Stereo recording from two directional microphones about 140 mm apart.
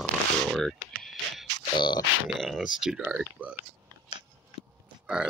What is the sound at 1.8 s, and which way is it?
Grunt, 30° left (ahead or behind).